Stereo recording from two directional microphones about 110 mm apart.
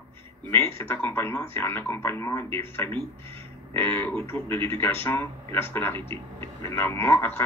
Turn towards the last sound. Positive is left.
turn(degrees=20)  # may be behind; listen again after turning